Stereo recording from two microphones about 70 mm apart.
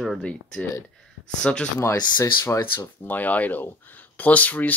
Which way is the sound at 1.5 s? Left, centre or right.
Centre.